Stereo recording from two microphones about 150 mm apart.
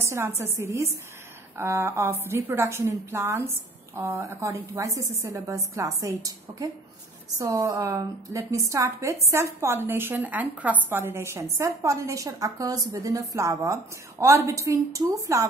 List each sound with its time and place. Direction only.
0.0 s a woman's voice: 20° right (ahead or behind)